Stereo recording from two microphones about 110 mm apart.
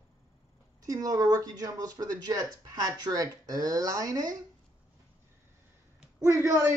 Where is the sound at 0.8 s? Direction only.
30° right (ahead or behind).